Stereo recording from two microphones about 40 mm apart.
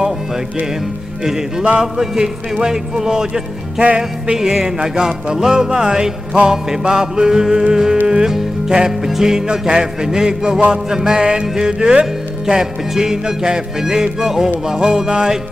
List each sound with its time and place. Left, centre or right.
1.8 s music: centre
3.8 s music: right
4.4 s music: centre